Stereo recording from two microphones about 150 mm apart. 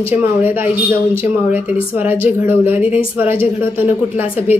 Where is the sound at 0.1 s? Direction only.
15° right (ahead or behind).